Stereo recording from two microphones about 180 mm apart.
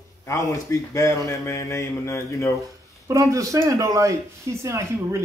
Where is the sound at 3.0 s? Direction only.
15° right (ahead or behind).